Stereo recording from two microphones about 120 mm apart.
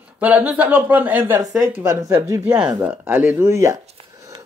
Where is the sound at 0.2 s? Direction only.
10° right (ahead or behind).